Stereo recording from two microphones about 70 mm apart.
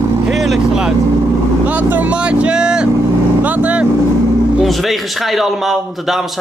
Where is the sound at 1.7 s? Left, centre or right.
Right.